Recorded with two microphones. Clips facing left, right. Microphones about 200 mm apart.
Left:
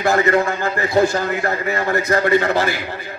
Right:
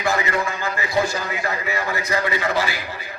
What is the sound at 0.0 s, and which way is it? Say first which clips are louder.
A man's voice: left 6 dB; 55° left (ahead or behind).